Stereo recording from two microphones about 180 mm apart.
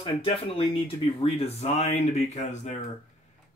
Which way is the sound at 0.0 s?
30° left (ahead or behind).